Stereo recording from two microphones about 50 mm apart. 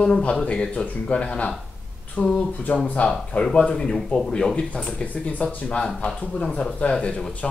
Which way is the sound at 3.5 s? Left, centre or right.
Centre.